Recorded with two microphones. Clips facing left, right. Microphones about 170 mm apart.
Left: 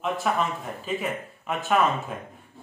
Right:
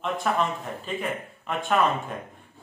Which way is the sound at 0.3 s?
5° left (ahead or behind).